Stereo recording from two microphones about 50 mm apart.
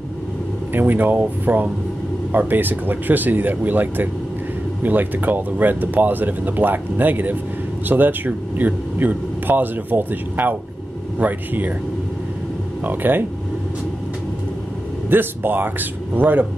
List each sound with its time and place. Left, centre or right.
0.7 s speech: right
12.8 s speech: right
15.0 s speech: right